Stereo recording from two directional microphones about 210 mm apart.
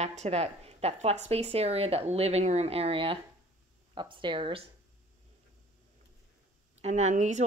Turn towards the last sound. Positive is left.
turn(degrees=-35)  # may be behind; listen again after turning